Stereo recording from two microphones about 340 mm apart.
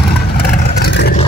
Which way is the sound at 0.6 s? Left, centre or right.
Left.